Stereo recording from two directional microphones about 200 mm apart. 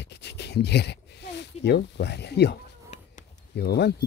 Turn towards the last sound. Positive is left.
turn(degrees=55)  # may be behind; listen again after turning